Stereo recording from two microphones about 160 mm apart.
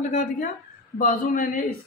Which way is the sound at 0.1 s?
55° left (ahead or behind).